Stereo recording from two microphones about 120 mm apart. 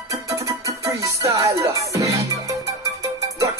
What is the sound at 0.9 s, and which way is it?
Music, 25° right (ahead or behind).